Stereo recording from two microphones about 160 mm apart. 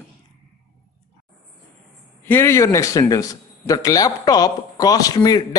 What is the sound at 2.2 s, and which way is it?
A man's voice, 15° left (ahead or behind).